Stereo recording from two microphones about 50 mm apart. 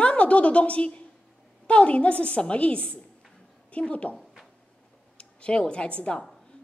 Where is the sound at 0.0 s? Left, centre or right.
Left.